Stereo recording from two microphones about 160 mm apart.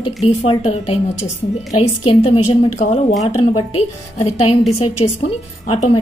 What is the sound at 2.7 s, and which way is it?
A woman's voice, 50° left (ahead or behind).